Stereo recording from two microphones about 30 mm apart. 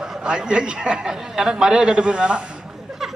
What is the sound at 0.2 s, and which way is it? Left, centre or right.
Speech, right.